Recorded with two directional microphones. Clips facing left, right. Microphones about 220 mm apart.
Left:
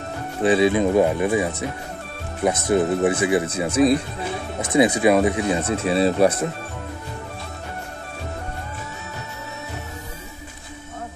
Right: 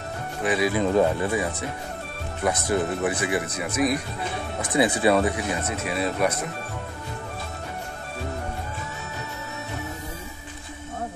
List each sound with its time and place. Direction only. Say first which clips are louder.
0.4 s speech: left 6 dB; 25° left (ahead or behind)